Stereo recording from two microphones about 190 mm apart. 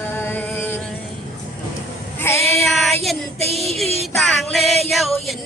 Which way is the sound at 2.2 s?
15° left (ahead or behind).